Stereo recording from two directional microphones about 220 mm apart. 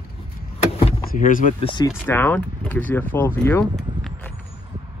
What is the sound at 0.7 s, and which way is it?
Power windows, 35° left (ahead or behind).